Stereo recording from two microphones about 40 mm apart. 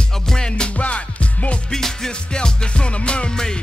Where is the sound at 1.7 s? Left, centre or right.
Centre.